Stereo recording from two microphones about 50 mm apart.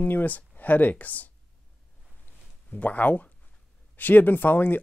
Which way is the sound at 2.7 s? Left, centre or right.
Left.